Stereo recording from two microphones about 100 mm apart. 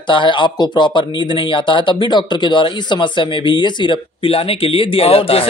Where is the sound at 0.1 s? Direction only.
55° left (ahead or behind).